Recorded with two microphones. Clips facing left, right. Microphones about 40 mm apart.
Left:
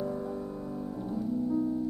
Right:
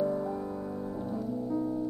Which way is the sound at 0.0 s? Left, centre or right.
Centre.